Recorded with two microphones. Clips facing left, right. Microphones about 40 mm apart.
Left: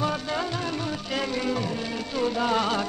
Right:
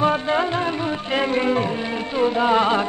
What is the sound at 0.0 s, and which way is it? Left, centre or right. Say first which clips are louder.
Music: right 8 dB; right.